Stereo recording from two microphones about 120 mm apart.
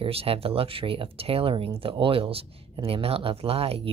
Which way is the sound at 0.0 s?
55° right (ahead or behind).